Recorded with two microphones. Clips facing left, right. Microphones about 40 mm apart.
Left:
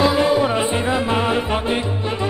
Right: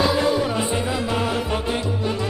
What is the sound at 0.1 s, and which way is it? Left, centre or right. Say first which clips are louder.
Music: left 4 dB; left.